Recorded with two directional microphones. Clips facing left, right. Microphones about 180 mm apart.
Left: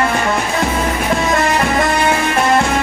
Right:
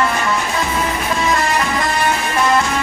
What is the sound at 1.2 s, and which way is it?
Music, 50° left (ahead or behind).